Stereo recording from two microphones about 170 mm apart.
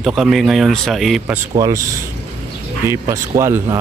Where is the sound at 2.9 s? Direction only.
15° right (ahead or behind).